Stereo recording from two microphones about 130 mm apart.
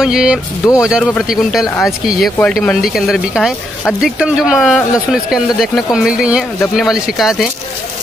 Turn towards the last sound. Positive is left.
turn(degrees=0)  # may be behind; listen again after turning